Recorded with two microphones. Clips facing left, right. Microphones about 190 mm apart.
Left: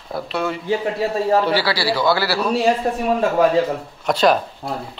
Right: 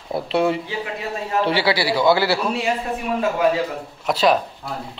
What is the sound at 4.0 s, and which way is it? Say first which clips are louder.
Speech: left 1 dB; 5° right (ahead or behind).